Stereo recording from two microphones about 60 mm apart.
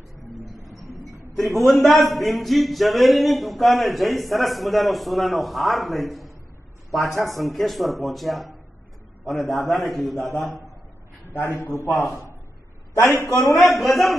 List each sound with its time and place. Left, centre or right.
0.9 s a man's voice: centre
11.2 s a man's voice: left
12.9 s a man's voice: left
13.5 s a man's voice: centre